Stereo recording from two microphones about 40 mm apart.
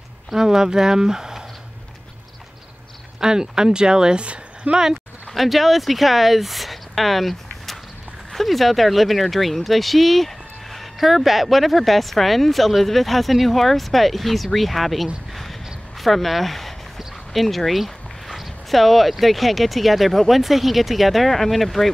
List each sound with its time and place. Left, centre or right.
0.3 s speech: centre
3.2 s speech: centre
5.3 s speech: centre